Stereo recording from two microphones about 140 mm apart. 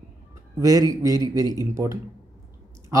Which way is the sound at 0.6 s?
25° right (ahead or behind).